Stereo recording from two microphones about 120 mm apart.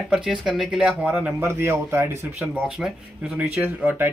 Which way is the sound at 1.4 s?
20° right (ahead or behind).